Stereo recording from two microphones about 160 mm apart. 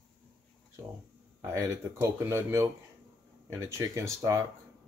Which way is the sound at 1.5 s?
20° right (ahead or behind).